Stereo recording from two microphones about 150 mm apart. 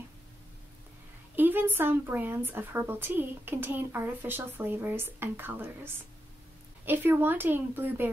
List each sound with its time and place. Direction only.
1.3 s speech: 15° right (ahead or behind)
6.9 s speech: 15° right (ahead or behind)